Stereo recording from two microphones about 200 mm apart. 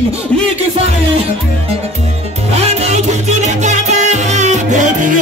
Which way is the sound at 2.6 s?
35° right (ahead or behind).